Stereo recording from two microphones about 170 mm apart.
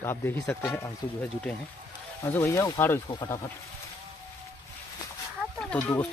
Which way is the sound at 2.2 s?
15° left (ahead or behind).